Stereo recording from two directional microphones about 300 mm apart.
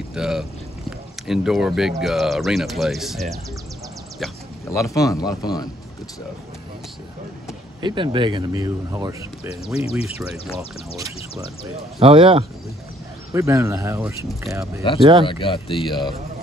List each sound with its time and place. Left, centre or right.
0.1 s speech: centre
4.2 s speech: centre
7.8 s speech: centre
12.0 s speech: centre
15.2 s speech: centre